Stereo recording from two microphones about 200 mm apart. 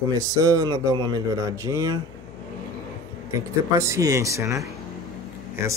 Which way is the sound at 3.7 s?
15° right (ahead or behind).